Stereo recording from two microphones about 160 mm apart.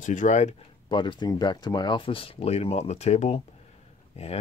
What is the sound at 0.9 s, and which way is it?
Speech, 30° left (ahead or behind).